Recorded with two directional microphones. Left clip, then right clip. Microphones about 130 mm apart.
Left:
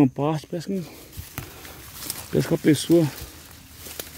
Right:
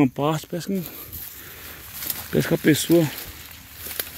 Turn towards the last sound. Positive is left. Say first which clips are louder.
# right 1 dB
turn(degrees=20)  # may be behind; listen again after turning